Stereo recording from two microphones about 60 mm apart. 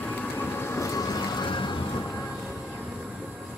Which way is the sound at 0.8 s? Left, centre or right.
Left.